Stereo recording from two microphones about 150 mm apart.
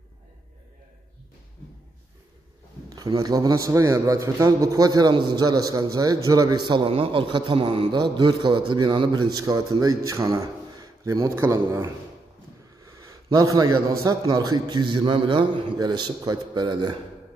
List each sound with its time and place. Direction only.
2.9 s a man's voice: 25° right (ahead or behind)
13.0 s a man's voice: 20° right (ahead or behind)